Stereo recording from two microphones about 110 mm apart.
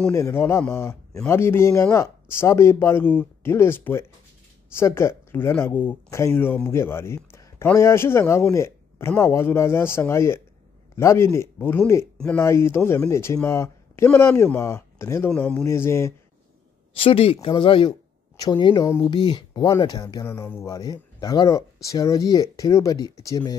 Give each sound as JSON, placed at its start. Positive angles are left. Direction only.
{"t": 0.1, "sound": "speech", "side_deg": 25}
{"t": 16.9, "sound": "speech", "side_deg": 60}
{"t": 20.2, "sound": "speech", "side_deg": 20}
{"t": 20.6, "sound": "speech", "side_deg": 35}